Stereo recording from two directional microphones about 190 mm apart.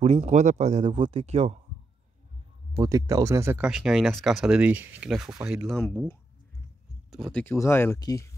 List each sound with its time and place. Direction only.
0.0 s speech: 35° right (ahead or behind)
2.7 s speech: 15° right (ahead or behind)
5.8 s speech: 10° left (ahead or behind)
7.4 s speech: 15° left (ahead or behind)